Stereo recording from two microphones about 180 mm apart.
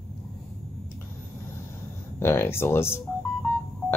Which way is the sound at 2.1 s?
15° left (ahead or behind).